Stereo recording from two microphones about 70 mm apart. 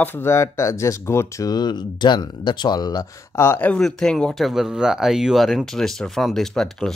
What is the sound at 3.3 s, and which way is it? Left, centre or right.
Speech, left.